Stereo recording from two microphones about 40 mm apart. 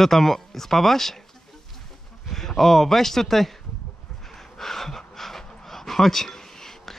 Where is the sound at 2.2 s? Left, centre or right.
Centre.